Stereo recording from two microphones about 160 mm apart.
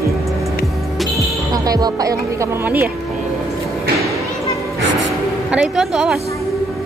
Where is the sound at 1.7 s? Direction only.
25° right (ahead or behind).